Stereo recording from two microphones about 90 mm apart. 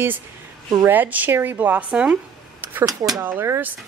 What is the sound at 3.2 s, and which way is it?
Speech, 25° right (ahead or behind).